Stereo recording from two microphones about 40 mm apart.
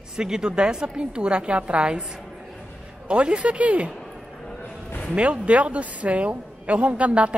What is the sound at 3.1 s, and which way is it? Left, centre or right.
Speech, right.